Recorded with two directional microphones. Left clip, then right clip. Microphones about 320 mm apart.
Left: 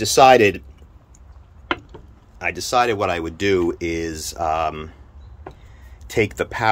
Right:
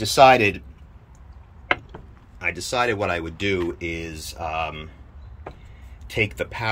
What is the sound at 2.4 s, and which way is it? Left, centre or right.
Speech, centre.